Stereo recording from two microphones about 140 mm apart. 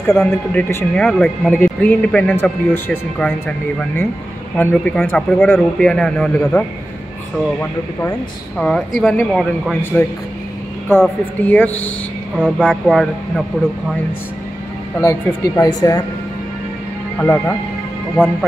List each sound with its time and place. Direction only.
0.0 s speech: 5° left (ahead or behind)
8.5 s speech: 5° left (ahead or behind)
11.4 s speech: 10° left (ahead or behind)
15.0 s speech: 25° left (ahead or behind)
17.2 s speech: 10° left (ahead or behind)